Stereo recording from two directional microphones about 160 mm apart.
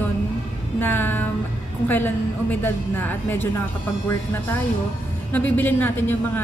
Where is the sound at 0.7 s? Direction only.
15° left (ahead or behind).